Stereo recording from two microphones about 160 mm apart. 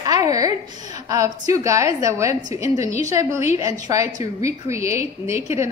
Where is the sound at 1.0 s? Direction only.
20° right (ahead or behind).